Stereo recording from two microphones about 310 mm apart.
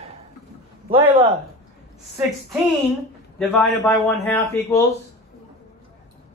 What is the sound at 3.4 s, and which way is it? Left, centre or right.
A man's voice, centre.